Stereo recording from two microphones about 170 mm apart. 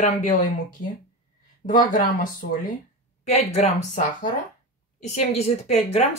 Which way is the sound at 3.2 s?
40° left (ahead or behind).